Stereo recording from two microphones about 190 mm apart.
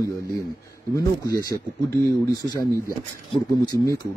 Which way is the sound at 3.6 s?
20° left (ahead or behind).